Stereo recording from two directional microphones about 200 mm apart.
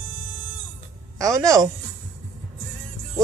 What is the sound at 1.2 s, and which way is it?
Speech, 15° right (ahead or behind).